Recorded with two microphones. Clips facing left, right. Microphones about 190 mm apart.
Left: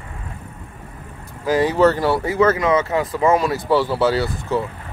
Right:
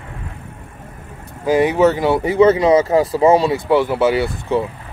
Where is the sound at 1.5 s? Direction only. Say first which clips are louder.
Right 2 dB; 20° right (ahead or behind).